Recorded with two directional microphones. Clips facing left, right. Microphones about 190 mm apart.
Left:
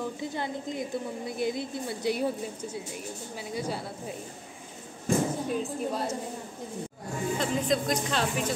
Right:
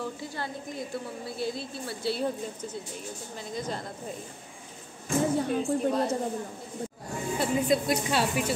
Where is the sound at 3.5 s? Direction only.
10° left (ahead or behind).